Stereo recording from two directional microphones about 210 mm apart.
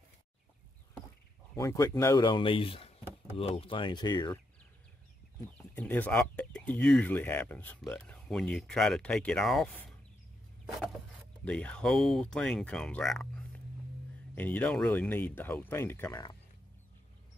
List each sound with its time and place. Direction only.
1.5 s speech: 15° left (ahead or behind)
5.8 s speech: 5° left (ahead or behind)
11.4 s speech: 5° left (ahead or behind)